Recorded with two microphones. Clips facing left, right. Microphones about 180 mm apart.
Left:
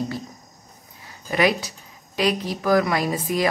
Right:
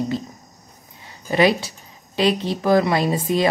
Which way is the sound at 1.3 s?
30° right (ahead or behind).